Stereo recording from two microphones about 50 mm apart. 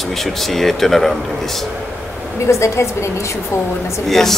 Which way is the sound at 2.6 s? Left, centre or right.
Left.